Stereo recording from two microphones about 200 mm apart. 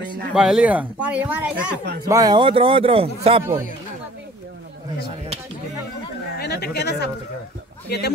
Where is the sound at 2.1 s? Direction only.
20° right (ahead or behind).